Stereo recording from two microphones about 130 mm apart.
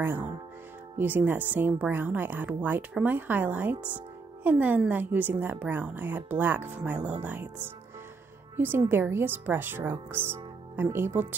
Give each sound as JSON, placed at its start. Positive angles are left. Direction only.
{"t": 0.0, "sound": "a woman's voice", "side_deg": -15}